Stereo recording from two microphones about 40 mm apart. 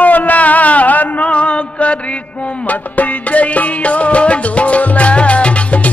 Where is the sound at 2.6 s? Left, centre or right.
Left.